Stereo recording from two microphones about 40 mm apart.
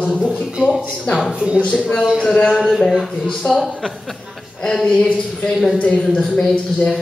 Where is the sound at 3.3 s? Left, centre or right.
Centre.